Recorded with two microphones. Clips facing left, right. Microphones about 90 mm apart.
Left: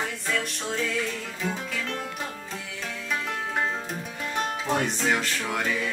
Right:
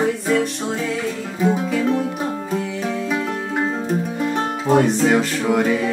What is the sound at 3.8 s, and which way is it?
Music, 25° right (ahead or behind).